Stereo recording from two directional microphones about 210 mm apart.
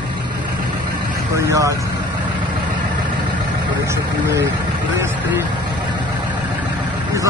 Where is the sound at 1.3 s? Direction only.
15° right (ahead or behind).